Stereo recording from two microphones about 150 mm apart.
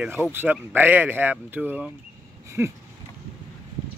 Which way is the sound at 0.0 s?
10° right (ahead or behind).